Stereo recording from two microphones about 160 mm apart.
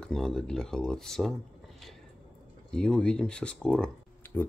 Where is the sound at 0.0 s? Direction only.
5° left (ahead or behind).